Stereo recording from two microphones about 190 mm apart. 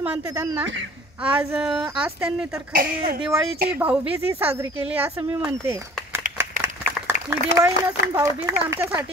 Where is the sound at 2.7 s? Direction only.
50° right (ahead or behind).